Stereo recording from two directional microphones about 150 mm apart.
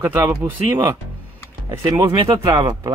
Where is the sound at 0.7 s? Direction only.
20° right (ahead or behind).